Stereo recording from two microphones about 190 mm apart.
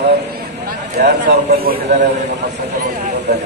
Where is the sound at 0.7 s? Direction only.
45° right (ahead or behind).